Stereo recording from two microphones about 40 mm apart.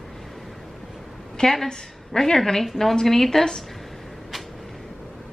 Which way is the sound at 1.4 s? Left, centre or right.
Centre.